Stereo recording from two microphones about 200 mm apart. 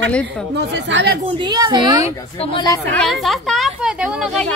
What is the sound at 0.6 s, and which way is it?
Speech, 60° right (ahead or behind).